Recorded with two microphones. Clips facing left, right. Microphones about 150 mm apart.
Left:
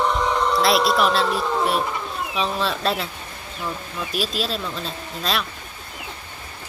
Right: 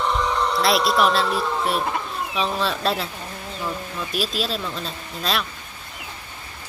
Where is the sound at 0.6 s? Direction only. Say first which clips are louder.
Even; centre (ahead or behind).